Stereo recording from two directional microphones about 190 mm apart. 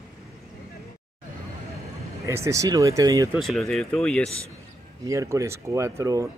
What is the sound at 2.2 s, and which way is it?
Speech, 15° right (ahead or behind).